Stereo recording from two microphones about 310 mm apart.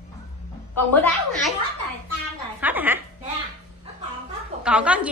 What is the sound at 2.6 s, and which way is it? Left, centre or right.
Speech, centre.